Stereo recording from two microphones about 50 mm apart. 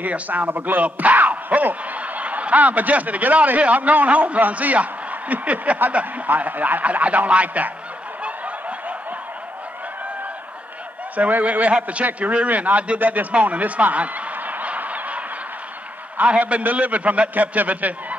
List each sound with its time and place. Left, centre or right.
0.0 s a man's voice: right
5.3 s a sound: right
5.8 s a man's voice: right
8.2 s snicker: right
11.1 s a man's voice: right